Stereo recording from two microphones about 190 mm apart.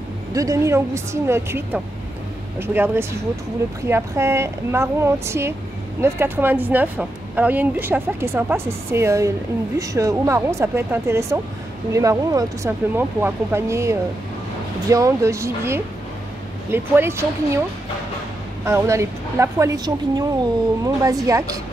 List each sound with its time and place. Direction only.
0.3 s speech: 15° right (ahead or behind)
18.7 s speech: 15° right (ahead or behind)